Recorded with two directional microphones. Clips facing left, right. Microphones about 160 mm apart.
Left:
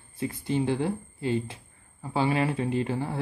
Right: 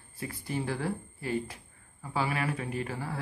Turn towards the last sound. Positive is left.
turn(degrees=25)  # may be behind; listen again after turning